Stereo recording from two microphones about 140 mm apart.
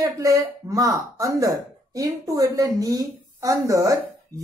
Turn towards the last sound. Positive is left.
turn(degrees=-25)  # may be behind; listen again after turning